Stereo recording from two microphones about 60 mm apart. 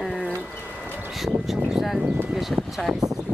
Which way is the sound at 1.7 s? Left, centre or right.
Centre.